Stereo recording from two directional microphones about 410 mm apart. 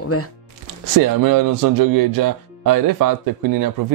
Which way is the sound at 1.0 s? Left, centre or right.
Right.